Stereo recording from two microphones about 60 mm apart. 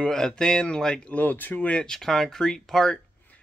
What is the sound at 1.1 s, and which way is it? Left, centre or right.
Speech, left.